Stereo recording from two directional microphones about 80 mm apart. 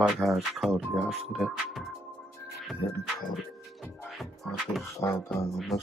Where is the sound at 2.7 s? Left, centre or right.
Centre.